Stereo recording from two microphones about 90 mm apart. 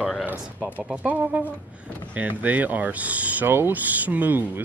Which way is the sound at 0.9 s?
15° right (ahead or behind).